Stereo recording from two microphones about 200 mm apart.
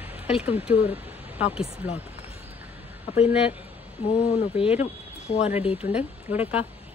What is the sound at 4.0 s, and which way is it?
Speech, 30° left (ahead or behind).